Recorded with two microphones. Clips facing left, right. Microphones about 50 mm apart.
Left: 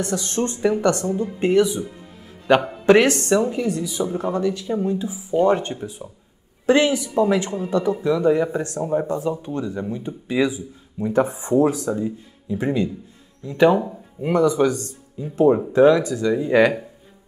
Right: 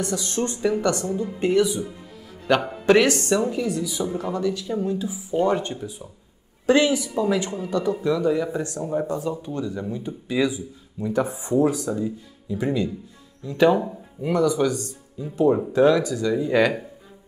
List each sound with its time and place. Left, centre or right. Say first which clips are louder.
0.0 s speech: left 2 dB; left
13.5 s speech: left 2 dB; centre
14.2 s speech: left 3 dB; left